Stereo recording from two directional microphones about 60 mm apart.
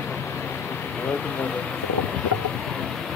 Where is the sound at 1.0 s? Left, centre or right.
Left.